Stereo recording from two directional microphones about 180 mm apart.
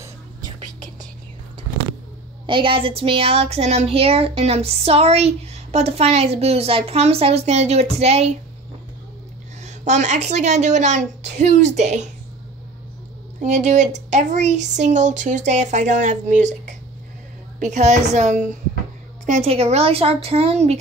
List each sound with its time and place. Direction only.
2.4 s child singing: 30° right (ahead or behind)
9.6 s child singing: 40° right (ahead or behind)
13.4 s child singing: 40° right (ahead or behind)